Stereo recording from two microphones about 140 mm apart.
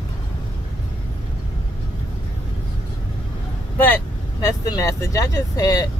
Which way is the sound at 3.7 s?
15° left (ahead or behind).